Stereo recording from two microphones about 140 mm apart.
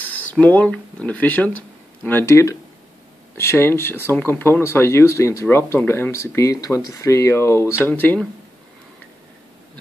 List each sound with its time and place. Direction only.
0.3 s speech: 10° left (ahead or behind)